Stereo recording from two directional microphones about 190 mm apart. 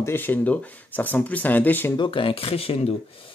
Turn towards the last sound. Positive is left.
turn(degrees=30)  # may be behind; listen again after turning